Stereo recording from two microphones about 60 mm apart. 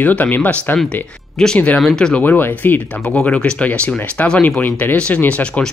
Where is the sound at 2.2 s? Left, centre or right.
Left.